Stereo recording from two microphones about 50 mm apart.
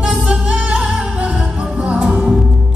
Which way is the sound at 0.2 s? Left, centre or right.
Right.